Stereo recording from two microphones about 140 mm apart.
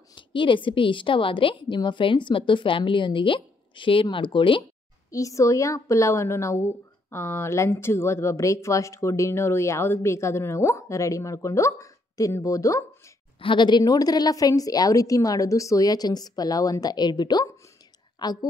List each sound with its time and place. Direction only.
0.1 s a woman's voice: 35° left (ahead or behind)
5.1 s a woman's voice: 25° left (ahead or behind)
13.4 s a woman's voice: 35° left (ahead or behind)